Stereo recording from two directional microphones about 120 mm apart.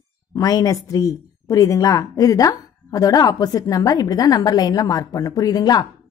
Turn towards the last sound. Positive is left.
turn(degrees=35)  # may be behind; listen again after turning